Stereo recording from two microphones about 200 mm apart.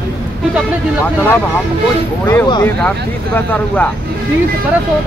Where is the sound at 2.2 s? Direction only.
20° left (ahead or behind).